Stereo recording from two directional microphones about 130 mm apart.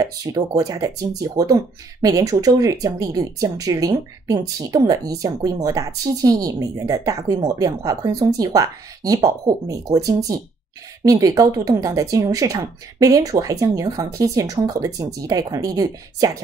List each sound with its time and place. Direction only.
0.0 s speech: 30° right (ahead or behind)